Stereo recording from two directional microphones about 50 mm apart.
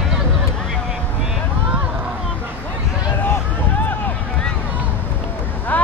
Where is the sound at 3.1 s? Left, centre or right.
Left.